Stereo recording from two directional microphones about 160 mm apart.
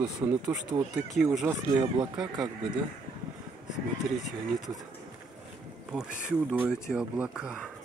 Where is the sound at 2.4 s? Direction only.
30° right (ahead or behind).